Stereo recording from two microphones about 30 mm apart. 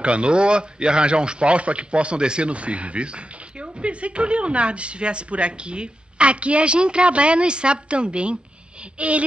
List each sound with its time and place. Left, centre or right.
0.0 s speech: right
2.5 s speech: right
8.9 s a sound: right